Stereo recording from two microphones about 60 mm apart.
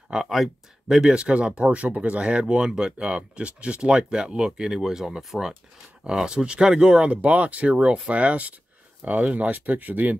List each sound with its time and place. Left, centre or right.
0.1 s speech: centre
1.1 s speech: centre